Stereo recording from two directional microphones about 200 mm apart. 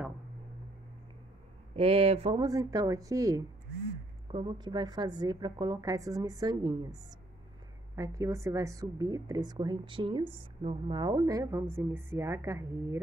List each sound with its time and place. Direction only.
1.8 s a woman's voice: 30° right (ahead or behind)
2.4 s a woman's voice: 15° right (ahead or behind)
7.9 s a woman's voice: 15° right (ahead or behind)